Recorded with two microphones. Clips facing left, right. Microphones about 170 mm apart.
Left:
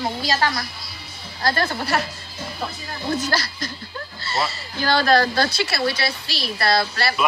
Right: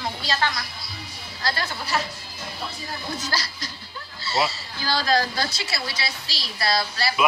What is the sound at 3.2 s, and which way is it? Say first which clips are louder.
Speech: left 5 dB; 55° left (ahead or behind).